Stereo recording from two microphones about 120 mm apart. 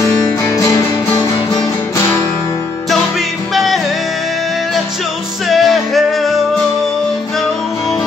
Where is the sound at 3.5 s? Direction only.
Centre (ahead or behind).